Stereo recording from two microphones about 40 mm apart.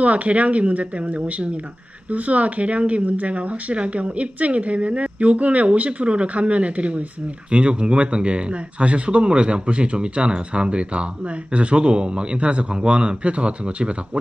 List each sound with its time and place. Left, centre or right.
0.0 s speech: right